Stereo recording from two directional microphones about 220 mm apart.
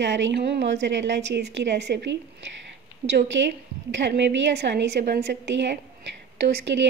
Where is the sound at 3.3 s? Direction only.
50° right (ahead or behind).